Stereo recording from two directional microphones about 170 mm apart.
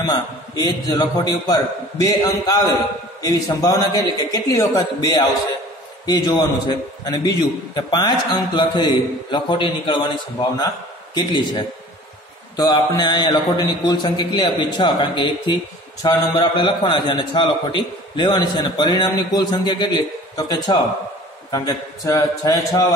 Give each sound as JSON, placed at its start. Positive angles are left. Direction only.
{"t": 0.0, "sound": "a man's voice", "side_deg": 25}
{"t": 11.1, "sound": "a man's voice", "side_deg": 25}